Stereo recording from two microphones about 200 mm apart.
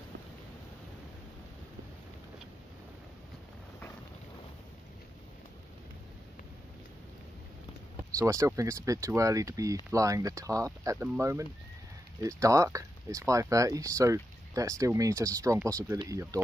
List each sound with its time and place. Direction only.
8.2 s speech: 15° right (ahead or behind)